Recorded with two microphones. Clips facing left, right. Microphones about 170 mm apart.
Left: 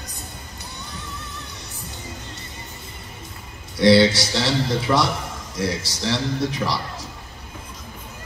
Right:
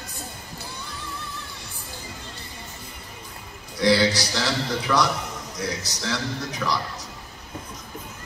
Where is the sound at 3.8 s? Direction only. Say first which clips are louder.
Left 5 dB; 25° left (ahead or behind).